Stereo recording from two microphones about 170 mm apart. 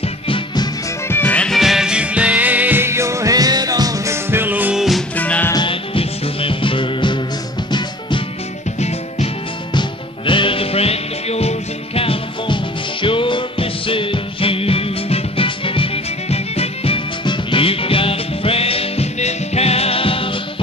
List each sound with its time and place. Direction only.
1.0 s music: 10° left (ahead or behind)
5.1 s music: 10° left (ahead or behind)
5.5 s music: 30° left (ahead or behind)
8.7 s music: 40° left (ahead or behind)